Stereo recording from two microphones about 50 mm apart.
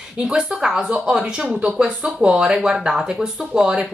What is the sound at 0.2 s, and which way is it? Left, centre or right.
A woman's voice, centre.